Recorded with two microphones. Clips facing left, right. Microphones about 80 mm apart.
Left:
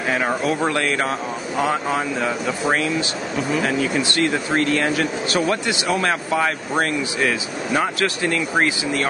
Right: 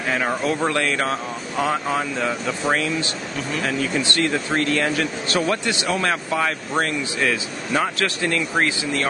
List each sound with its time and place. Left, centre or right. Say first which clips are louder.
0.1 s speech: left 1 dB; centre
5.3 s speech: right 1 dB; centre